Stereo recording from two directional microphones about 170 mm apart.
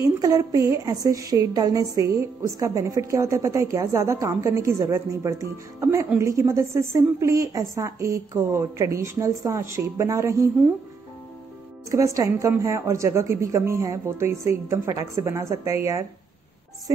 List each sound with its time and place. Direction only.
0.2 s a woman's voice: 20° right (ahead or behind)
11.9 s a woman's voice: 20° right (ahead or behind)